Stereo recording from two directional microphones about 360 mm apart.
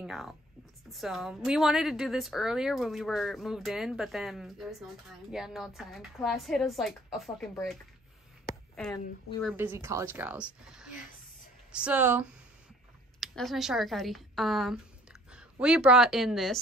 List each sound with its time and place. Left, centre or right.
0.0 s a woman's voice: centre
8.7 s a woman's voice: centre